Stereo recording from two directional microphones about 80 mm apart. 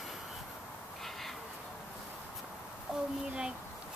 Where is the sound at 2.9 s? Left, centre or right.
Centre.